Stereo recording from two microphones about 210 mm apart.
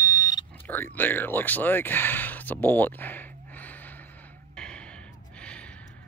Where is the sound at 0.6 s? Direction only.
10° left (ahead or behind).